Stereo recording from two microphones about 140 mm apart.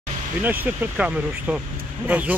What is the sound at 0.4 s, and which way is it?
Speech, 15° right (ahead or behind).